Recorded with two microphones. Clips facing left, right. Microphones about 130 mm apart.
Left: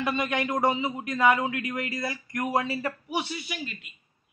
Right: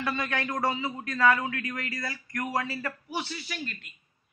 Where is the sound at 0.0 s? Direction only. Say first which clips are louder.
Left 3 dB; 20° left (ahead or behind).